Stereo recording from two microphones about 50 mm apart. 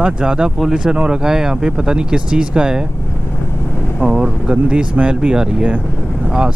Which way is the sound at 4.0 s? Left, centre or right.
Centre.